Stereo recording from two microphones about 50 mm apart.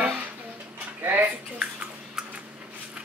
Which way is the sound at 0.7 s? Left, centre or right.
Right.